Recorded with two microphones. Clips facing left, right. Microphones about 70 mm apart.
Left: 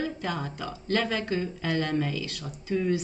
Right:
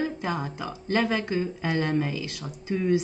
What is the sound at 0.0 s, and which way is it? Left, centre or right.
Speech, right.